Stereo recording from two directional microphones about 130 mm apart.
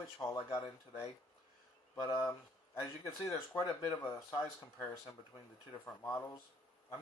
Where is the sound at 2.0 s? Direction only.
20° left (ahead or behind).